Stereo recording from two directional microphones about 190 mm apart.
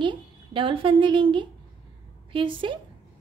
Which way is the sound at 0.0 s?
25° right (ahead or behind).